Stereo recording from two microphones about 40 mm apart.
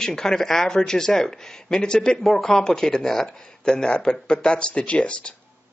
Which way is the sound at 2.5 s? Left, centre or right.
Centre.